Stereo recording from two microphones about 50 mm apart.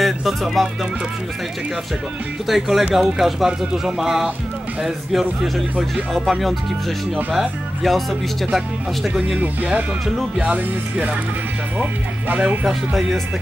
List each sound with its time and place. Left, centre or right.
0.0 s speech: centre
2.4 s speech: centre
7.3 s speech: centre
9.4 s speech: right